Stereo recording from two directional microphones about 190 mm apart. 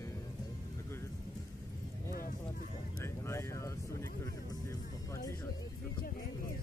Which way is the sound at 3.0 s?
15° left (ahead or behind).